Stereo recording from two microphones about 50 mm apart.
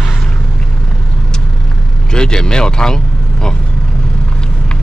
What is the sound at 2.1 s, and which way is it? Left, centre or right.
Speech, centre.